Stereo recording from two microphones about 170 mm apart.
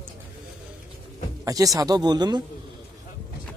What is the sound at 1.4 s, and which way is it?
Speech, 20° right (ahead or behind).